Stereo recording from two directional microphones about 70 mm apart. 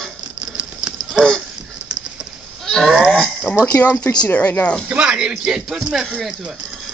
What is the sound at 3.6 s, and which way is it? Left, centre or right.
Speech, left.